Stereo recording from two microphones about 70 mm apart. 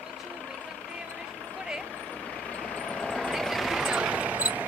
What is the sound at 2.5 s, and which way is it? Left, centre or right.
Vehicle, centre.